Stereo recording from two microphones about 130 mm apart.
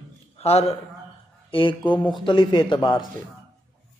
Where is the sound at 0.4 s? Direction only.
55° left (ahead or behind).